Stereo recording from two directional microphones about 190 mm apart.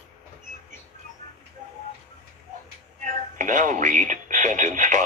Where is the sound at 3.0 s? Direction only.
40° right (ahead or behind).